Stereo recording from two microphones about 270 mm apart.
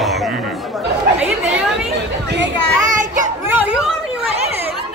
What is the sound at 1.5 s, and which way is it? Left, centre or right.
Chatter, centre.